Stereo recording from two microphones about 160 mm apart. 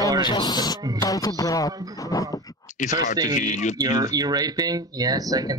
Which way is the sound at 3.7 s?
25° right (ahead or behind).